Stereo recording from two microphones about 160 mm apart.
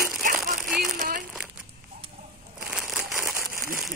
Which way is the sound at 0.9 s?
55° right (ahead or behind).